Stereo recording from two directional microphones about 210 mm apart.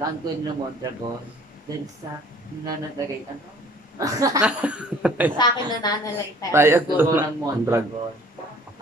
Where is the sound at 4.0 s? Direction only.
15° right (ahead or behind).